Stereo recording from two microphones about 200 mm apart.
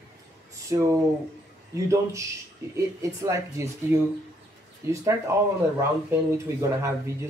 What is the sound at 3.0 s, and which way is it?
Speech, 15° right (ahead or behind).